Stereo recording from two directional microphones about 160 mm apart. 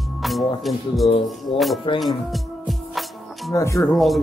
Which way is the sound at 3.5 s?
20° left (ahead or behind).